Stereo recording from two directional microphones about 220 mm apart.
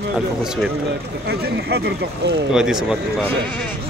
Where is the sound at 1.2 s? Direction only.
45° right (ahead or behind).